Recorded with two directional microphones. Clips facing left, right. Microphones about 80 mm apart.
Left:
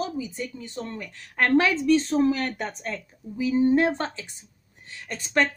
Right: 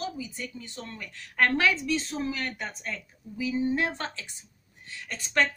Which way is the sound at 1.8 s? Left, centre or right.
Left.